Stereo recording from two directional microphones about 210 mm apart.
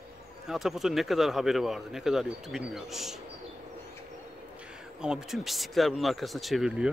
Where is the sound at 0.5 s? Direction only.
Centre (ahead or behind).